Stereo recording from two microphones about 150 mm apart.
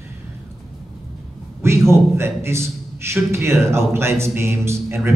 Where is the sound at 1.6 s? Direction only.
15° right (ahead or behind).